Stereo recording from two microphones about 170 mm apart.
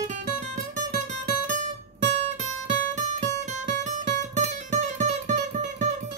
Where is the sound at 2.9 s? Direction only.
45° right (ahead or behind).